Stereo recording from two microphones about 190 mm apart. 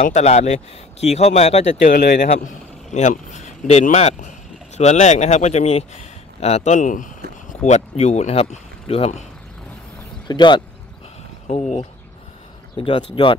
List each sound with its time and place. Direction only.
0.0 s speech: 35° left (ahead or behind)
10.2 s speech: 25° left (ahead or behind)
12.7 s speech: 25° left (ahead or behind)